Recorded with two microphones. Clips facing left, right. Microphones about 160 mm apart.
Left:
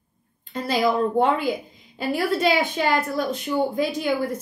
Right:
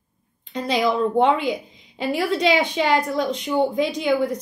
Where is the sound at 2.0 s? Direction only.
5° left (ahead or behind).